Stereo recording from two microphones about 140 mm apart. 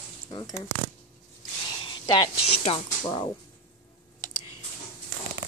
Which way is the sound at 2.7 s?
45° left (ahead or behind).